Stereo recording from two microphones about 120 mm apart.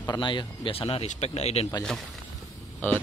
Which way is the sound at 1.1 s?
65° left (ahead or behind).